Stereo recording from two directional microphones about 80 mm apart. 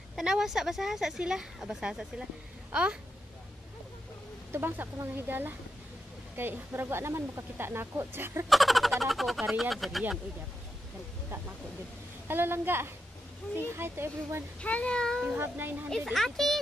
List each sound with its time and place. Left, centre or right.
0.2 s speech: centre
4.5 s speech: right
8.5 s speech: centre
12.3 s speech: right
14.6 s speech: centre
15.2 s speech: right
16.1 s speech: centre